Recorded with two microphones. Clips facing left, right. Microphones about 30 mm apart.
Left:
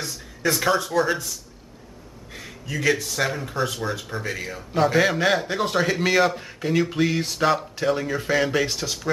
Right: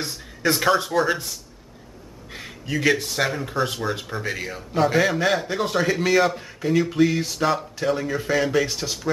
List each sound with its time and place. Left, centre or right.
0.4 s a man's voice: centre
2.3 s a man's voice: centre
3.3 s a man's voice: centre
4.7 s a man's voice: centre